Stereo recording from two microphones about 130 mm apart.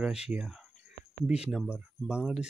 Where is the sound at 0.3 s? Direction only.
5° right (ahead or behind).